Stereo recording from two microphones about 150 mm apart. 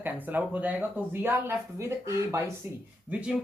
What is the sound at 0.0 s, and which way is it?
Speech, 10° right (ahead or behind).